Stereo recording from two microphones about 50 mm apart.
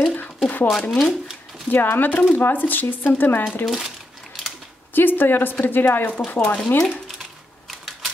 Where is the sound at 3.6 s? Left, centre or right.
Centre.